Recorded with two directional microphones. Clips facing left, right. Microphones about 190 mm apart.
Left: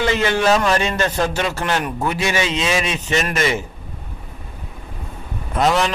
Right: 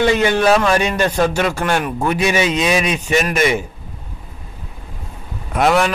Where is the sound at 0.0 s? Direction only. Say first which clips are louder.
Right 3 dB; 15° right (ahead or behind).